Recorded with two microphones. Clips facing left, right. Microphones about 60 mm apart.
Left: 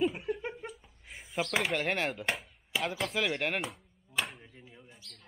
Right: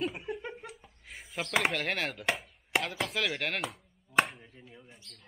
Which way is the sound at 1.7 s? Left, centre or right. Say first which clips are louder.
Left 2 dB; centre.